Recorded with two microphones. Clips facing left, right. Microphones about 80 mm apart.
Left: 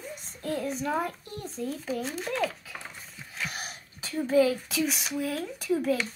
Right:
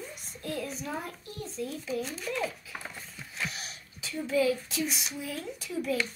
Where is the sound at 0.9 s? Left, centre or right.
Left.